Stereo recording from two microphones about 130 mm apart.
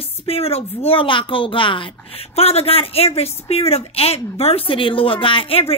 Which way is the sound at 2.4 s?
50° left (ahead or behind).